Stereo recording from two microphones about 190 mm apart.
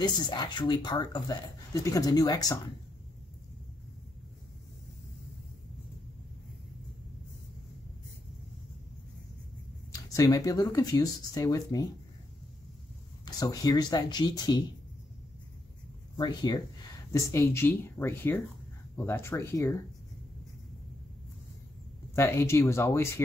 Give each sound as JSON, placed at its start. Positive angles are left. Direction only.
{"t": 0.0, "sound": "speech", "side_deg": 20}
{"t": 10.0, "sound": "speech", "side_deg": 20}
{"t": 13.2, "sound": "speech", "side_deg": 20}
{"t": 16.2, "sound": "speech", "side_deg": 20}
{"t": 22.1, "sound": "speech", "side_deg": 15}